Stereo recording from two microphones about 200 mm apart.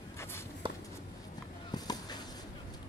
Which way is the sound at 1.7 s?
20° left (ahead or behind).